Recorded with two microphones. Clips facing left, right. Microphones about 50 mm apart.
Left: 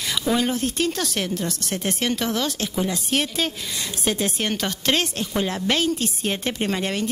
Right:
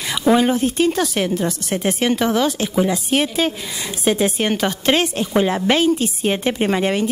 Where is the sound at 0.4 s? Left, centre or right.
Centre.